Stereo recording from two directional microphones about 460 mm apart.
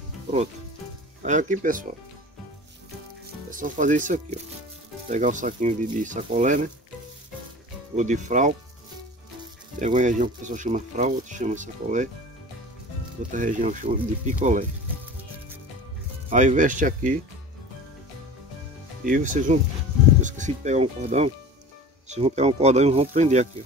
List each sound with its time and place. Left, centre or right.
1.2 s speech: centre
3.4 s speech: centre
7.9 s speech: centre
9.8 s speech: centre
13.3 s speech: centre
16.3 s speech: centre
19.0 s speech: centre